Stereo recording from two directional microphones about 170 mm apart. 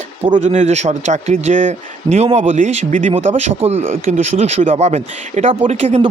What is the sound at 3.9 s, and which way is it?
Speech, 55° right (ahead or behind).